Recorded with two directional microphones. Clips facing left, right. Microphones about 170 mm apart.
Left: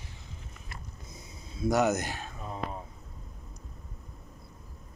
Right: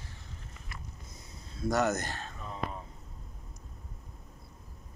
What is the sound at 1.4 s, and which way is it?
Speech, 10° left (ahead or behind).